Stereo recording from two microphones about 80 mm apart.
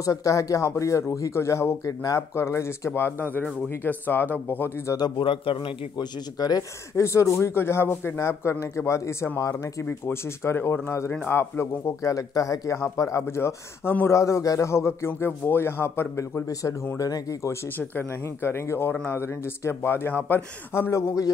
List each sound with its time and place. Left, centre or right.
0.0 s a man's voice: left
1.9 s speech: left
2.3 s a man's voice: left
4.9 s speech: left
6.3 s speech: left
7.0 s a man's voice: left
17.0 s speech: left
17.7 s a man's voice: left